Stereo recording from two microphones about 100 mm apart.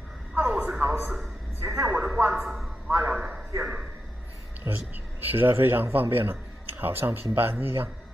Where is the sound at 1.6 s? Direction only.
20° right (ahead or behind).